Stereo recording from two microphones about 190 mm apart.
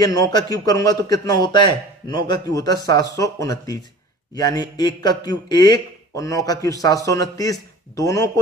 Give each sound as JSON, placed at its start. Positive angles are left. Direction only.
{"t": 0.0, "sound": "speech", "side_deg": 20}